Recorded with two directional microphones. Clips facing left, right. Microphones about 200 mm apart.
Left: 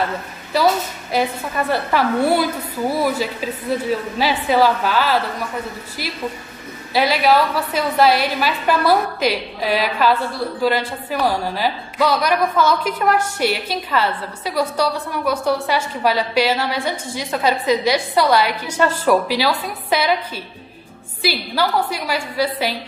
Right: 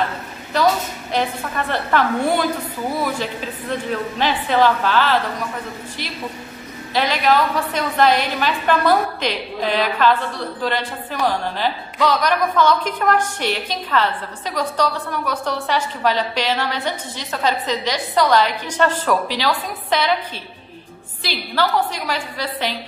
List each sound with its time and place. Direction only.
1.1 s a woman's voice: 10° left (ahead or behind)
6.9 s a woman's voice: 10° left (ahead or behind)
21.2 s a woman's voice: 10° left (ahead or behind)